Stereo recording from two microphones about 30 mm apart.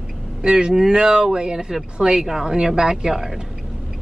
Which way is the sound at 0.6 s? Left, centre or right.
Centre.